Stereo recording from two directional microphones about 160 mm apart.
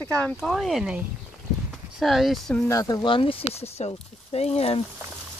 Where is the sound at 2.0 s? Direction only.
Centre (ahead or behind).